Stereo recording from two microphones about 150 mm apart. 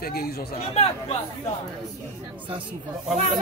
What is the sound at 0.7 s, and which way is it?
Speech, 40° left (ahead or behind).